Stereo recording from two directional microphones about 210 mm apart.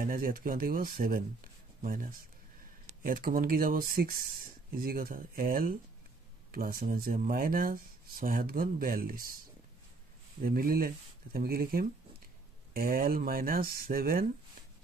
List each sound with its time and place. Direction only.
0.0 s speech: 40° right (ahead or behind)
10.4 s speech: 45° right (ahead or behind)